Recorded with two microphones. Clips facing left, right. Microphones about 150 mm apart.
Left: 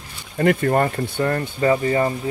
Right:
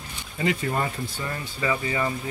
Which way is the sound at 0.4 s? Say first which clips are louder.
Left 8 dB; 55° left (ahead or behind).